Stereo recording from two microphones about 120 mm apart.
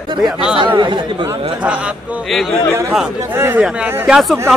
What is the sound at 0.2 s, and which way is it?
Speech, 5° right (ahead or behind).